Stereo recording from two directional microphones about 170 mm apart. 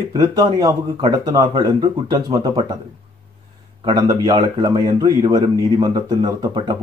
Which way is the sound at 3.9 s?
25° right (ahead or behind).